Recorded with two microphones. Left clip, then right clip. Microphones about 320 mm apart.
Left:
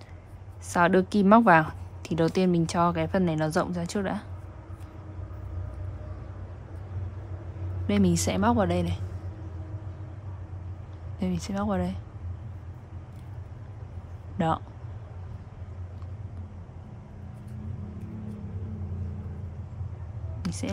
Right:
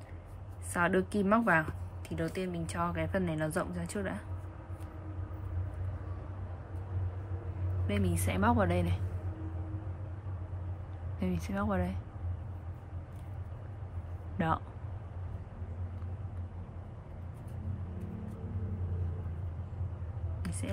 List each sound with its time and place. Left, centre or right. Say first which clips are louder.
0.7 s a woman's voice: left 8 dB; centre
7.8 s a woman's voice: left 9 dB; centre
11.1 s a woman's voice: left 4 dB; centre
14.4 s a woman's voice: left 5 dB; centre
20.4 s a sound: left 8 dB; centre